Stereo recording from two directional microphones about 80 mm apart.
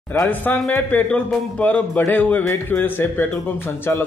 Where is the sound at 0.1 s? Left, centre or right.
Left.